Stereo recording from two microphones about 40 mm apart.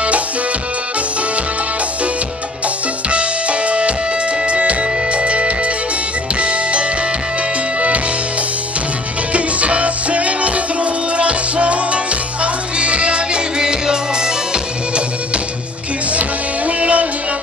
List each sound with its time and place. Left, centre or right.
3.1 s music: right
9.3 s music: right
16.1 s music: right